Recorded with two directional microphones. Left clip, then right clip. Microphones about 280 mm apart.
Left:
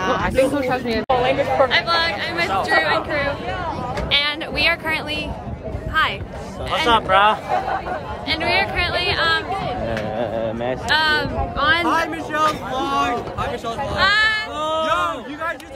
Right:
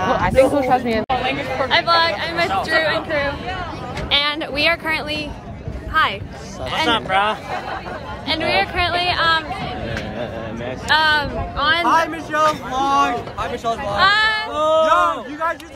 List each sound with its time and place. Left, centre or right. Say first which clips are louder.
0.4 s speech: right 6 dB; right
1.0 s speech: left 3 dB; left
1.7 s a man's voice: right 3 dB; centre
3.2 s speech: right 1 dB; left
4.1 s a man's voice: right 2 dB; centre
7.4 s speech: left 5 dB; left
8.3 s a man's voice: right 1 dB; centre
10.9 s a man's voice: right 3 dB; centre